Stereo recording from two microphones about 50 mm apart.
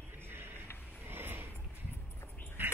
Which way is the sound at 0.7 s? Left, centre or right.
Left.